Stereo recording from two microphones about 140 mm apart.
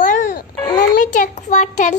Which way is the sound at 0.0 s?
65° left (ahead or behind).